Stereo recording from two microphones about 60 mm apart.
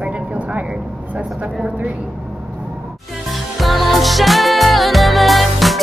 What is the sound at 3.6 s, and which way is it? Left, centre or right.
Music, centre.